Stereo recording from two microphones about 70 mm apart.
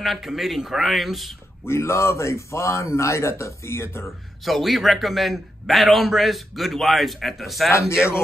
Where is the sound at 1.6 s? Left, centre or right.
Left.